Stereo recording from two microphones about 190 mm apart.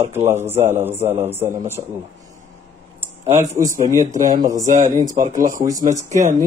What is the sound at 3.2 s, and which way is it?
A man's voice, 35° right (ahead or behind).